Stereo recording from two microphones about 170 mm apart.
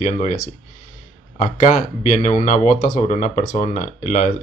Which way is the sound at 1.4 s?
45° left (ahead or behind).